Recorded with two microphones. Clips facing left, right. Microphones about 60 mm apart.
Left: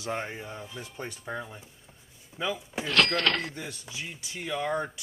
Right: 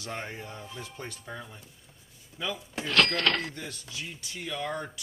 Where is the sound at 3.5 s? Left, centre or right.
Centre.